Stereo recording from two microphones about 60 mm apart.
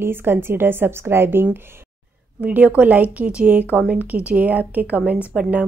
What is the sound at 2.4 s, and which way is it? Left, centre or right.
Speech, right.